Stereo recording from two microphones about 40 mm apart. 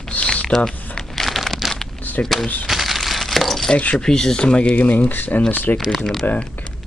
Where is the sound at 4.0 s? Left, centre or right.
Centre.